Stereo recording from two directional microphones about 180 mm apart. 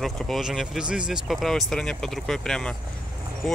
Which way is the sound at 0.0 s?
Centre (ahead or behind).